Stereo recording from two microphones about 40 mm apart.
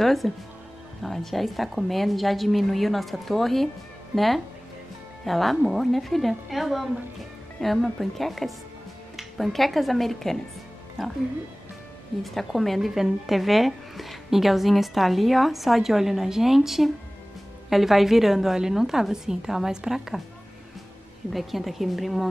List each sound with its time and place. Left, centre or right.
0.0 s speech: centre
12.2 s a woman's voice: centre
21.3 s speech: centre